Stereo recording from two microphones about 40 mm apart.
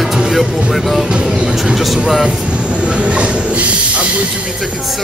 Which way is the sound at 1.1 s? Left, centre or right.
Centre.